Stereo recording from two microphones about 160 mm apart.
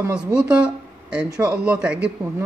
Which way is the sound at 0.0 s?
5° right (ahead or behind).